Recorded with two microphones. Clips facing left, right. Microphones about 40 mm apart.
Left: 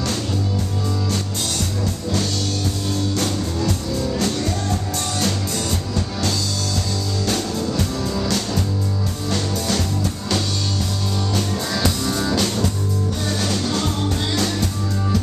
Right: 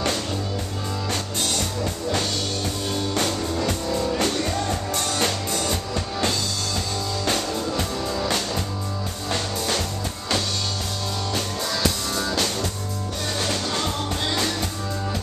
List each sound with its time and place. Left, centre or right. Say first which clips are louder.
4.2 s music: left 1 dB; right
7.2 s music: left 2 dB; centre
9.3 s music: left 2 dB; centre
11.7 s music: left 3 dB; centre